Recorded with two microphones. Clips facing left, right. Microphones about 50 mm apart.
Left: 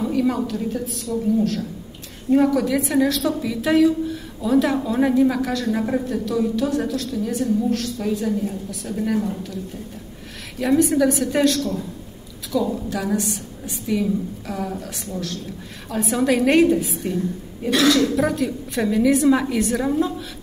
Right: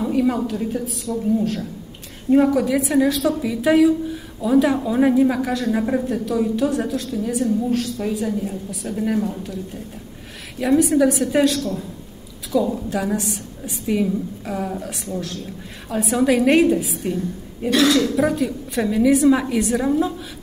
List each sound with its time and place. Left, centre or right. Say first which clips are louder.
0.0 s a sound: right 1 dB; centre
0.5 s a woman's voice: right 1 dB; centre
1.0 s a woman's voice: left 1 dB; centre
2.3 s a woman's voice: right 1 dB; centre
10.6 s a woman's voice: right 1 dB; centre
15.9 s a woman's voice: right 2 dB; centre